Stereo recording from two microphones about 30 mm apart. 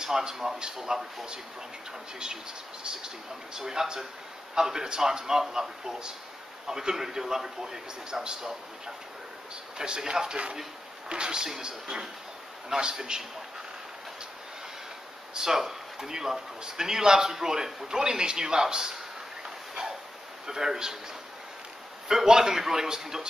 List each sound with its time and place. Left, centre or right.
0.2 s speech: centre
2.8 s a man's voice: right
8.4 s a man's voice: centre
15.3 s speech: centre
17.8 s speech: right
20.4 s a man's voice: centre
22.0 s a man's voice: centre